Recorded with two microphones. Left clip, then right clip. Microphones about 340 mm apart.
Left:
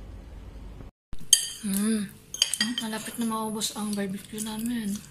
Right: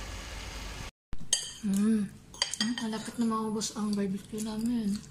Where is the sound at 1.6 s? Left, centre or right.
Centre.